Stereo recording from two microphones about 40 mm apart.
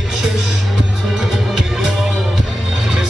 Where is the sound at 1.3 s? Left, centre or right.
Centre.